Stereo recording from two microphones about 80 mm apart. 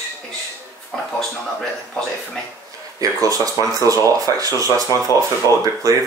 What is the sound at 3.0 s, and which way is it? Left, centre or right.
Speech, right.